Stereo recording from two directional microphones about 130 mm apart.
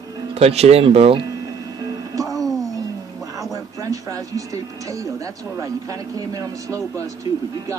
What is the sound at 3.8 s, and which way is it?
Speech, 25° right (ahead or behind).